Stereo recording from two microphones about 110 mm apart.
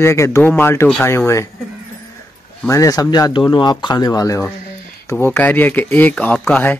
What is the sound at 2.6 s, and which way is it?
Speech, 30° left (ahead or behind).